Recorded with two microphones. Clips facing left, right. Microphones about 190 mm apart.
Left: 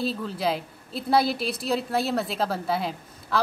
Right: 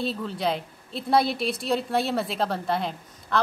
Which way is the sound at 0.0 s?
Centre (ahead or behind).